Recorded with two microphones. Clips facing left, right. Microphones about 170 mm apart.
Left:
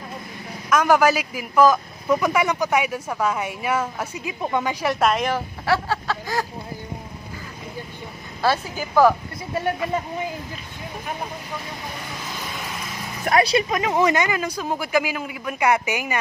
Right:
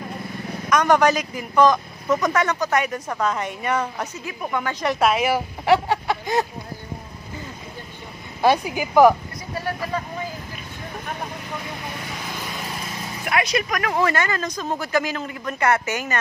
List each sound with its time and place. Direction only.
0.7 s a man's voice: 5° left (ahead or behind)
4.2 s speech: 20° left (ahead or behind)
4.7 s a woman's voice: centre (ahead or behind)
5.7 s a sound: 20° right (ahead or behind)
8.4 s speech: 15° right (ahead or behind)
9.5 s speech: 25° left (ahead or behind)
13.2 s a man's voice: 35° left (ahead or behind); by 16.2 s 10° left (ahead or behind)